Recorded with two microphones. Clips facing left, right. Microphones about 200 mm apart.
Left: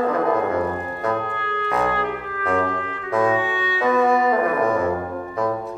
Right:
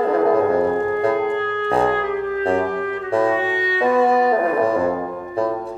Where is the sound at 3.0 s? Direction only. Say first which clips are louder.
Right 1 dB; 30° right (ahead or behind).